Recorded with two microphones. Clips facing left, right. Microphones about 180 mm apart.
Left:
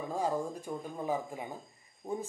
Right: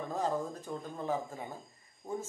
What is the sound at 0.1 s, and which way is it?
Speech, 10° left (ahead or behind).